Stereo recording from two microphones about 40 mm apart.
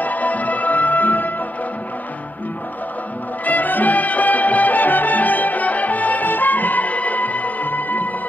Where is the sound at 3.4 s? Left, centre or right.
Left.